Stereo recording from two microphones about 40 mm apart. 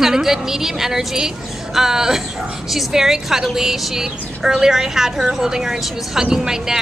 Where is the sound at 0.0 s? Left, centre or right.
Centre.